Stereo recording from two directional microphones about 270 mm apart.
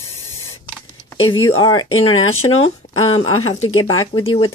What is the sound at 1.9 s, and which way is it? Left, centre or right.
Speech, left.